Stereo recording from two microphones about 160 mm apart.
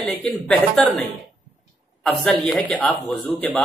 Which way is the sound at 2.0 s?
10° left (ahead or behind).